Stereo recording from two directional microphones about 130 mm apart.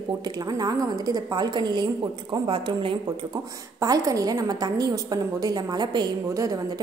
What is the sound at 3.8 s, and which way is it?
A woman's voice, 25° right (ahead or behind).